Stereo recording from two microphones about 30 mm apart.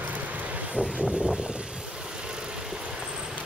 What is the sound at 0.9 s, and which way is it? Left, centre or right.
Vehicle, right.